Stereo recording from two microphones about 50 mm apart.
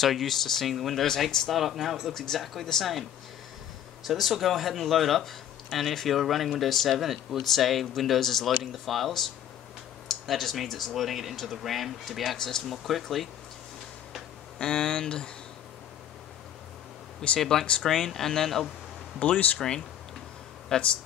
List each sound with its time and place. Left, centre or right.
0.0 s speech: centre
1.5 s speech: centre
4.0 s speech: centre
12.4 s speech: centre
12.6 s speech: centre
14.6 s speech: centre
17.4 s speech: centre
19.1 s speech: left
20.7 s speech: centre